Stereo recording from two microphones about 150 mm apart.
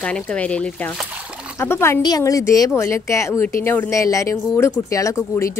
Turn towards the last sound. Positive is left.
turn(degrees=20)  # may be behind; listen again after turning